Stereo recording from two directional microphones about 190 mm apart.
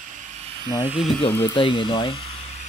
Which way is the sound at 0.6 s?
25° left (ahead or behind).